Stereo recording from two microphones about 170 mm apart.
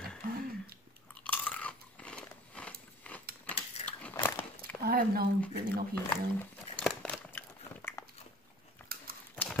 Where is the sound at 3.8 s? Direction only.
10° left (ahead or behind).